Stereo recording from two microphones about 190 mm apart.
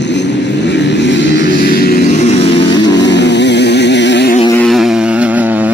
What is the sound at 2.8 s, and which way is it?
Vehicle, 65° left (ahead or behind).